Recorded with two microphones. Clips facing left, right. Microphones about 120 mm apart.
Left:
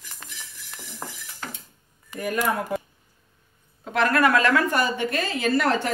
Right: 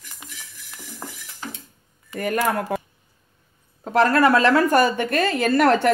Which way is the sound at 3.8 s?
35° right (ahead or behind).